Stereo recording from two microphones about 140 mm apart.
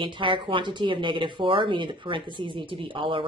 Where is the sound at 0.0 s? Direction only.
35° right (ahead or behind).